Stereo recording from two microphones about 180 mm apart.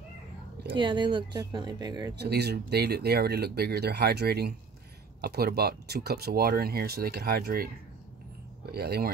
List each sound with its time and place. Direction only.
0.7 s speech: 25° right (ahead or behind)
2.1 s speech: 65° right (ahead or behind)
8.7 s speech: 60° right (ahead or behind)